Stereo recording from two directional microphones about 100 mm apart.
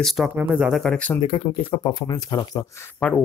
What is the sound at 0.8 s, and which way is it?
Speech, 10° left (ahead or behind).